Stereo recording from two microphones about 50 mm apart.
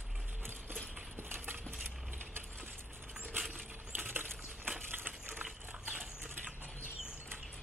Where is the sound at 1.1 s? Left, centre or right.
Right.